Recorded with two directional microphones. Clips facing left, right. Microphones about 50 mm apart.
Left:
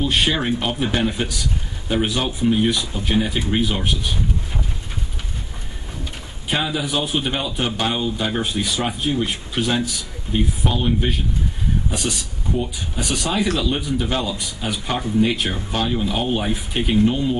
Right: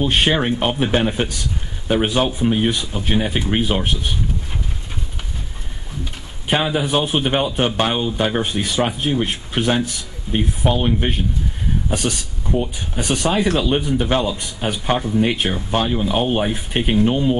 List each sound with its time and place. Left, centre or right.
0.0 s speech: right
6.4 s speech: right